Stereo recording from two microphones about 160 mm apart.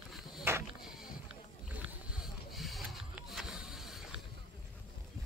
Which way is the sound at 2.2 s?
Centre (ahead or behind).